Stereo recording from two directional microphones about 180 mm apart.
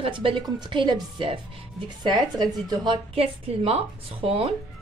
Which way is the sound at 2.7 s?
25° right (ahead or behind).